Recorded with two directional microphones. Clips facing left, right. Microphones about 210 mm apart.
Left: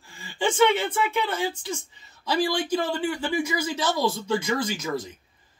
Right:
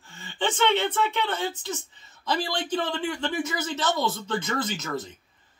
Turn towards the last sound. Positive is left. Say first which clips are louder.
# left 2 dB
turn(degrees=10)  # may be behind; listen again after turning